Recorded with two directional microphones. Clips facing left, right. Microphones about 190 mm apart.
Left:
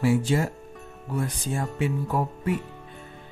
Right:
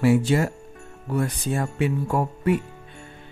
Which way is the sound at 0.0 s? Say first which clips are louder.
Right 3 dB; 70° right (ahead or behind).